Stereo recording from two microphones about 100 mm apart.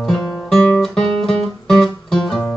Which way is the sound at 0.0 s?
5° left (ahead or behind).